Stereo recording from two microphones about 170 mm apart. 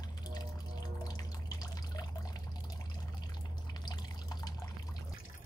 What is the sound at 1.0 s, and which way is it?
Drip, 20° left (ahead or behind).